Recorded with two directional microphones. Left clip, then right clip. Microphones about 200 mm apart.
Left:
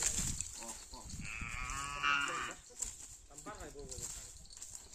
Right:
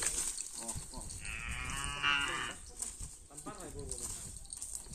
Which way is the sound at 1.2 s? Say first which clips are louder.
Right 1 dB; 55° left (ahead or behind).